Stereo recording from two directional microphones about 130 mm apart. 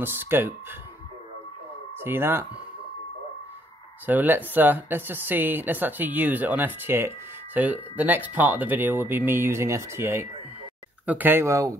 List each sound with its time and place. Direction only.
0.0 s speech: 15° right (ahead or behind)
2.0 s speech: 15° right (ahead or behind)
4.0 s speech: 15° right (ahead or behind)